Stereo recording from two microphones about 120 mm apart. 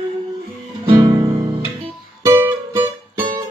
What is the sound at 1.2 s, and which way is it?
Guitar, 30° right (ahead or behind).